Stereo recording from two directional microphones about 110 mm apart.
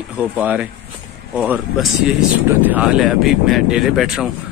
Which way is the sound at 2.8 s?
5° right (ahead or behind).